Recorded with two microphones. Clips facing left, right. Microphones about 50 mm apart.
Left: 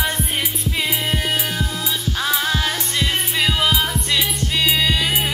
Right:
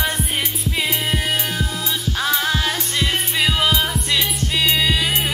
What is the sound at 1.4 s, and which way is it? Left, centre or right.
Music, left.